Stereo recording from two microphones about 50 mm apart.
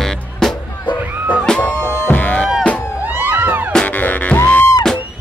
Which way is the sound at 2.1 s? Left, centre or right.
Left.